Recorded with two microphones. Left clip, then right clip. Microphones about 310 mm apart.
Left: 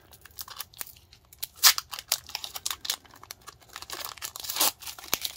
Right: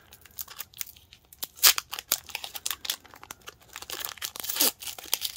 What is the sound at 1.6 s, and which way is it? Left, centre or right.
Tearing, centre.